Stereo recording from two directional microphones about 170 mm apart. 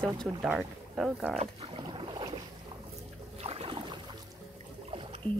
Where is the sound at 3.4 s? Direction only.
35° right (ahead or behind).